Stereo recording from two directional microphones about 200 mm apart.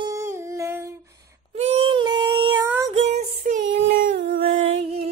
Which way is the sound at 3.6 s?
70° right (ahead or behind).